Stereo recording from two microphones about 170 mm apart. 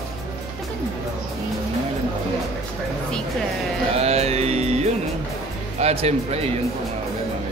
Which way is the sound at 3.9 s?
40° right (ahead or behind).